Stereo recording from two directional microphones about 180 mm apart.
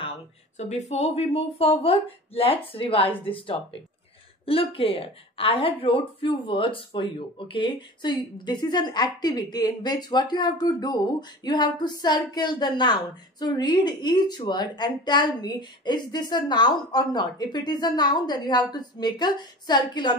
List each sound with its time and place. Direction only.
0.6 s a woman's voice: 40° left (ahead or behind); by 20.2 s 25° left (ahead or behind)